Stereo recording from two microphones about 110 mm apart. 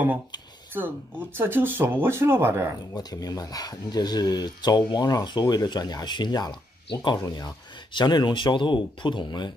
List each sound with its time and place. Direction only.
0.7 s speech: 20° right (ahead or behind)
2.9 s speech: 35° left (ahead or behind)